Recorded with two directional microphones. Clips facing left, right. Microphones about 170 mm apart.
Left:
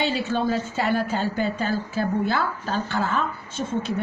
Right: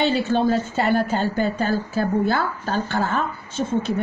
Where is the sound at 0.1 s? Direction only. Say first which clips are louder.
Right 4 dB; 50° right (ahead or behind).